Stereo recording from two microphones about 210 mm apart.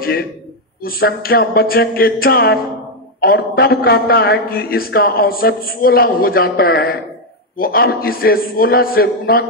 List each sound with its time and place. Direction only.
0.8 s a man's voice: 45° left (ahead or behind)